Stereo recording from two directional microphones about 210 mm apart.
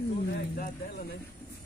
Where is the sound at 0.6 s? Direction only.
50° left (ahead or behind).